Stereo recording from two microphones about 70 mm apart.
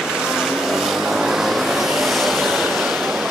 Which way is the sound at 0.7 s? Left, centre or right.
Centre.